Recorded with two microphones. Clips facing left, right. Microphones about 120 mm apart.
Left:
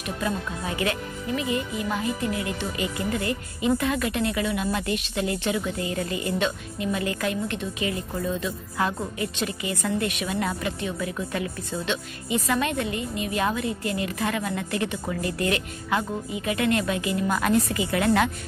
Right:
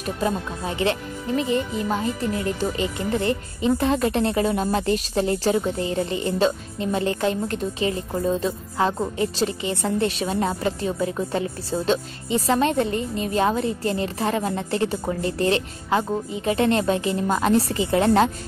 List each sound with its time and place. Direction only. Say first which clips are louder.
0.0 s speech: right 4 dB; 30° right (ahead or behind)